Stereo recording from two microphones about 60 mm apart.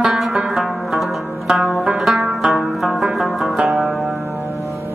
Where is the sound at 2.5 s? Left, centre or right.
Centre.